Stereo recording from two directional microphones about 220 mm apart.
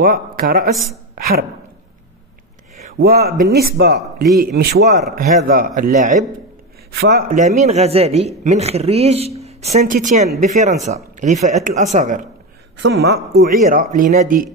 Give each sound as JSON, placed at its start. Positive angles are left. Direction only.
{"t": 0.0, "sound": "speech", "side_deg": -40}
{"t": 1.1, "sound": "a sound", "side_deg": -40}
{"t": 3.0, "sound": "a man's voice", "side_deg": -45}
{"t": 6.9, "sound": "a man's voice", "side_deg": -45}
{"t": 12.7, "sound": "speech", "side_deg": -50}